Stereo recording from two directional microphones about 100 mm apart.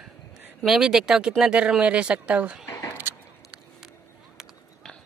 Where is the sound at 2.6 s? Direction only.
30° left (ahead or behind).